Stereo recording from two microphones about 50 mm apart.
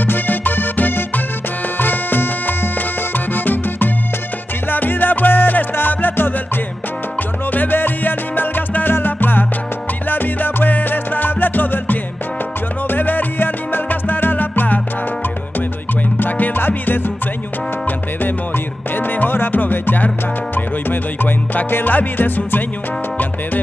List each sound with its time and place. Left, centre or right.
0.0 s music: left
7.5 s music: left
16.2 s music: left
18.9 s music: left